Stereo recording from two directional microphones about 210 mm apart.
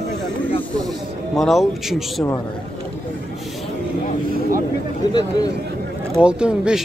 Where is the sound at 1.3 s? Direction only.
Centre (ahead or behind).